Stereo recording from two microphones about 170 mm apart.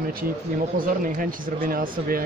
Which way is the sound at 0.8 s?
55° right (ahead or behind).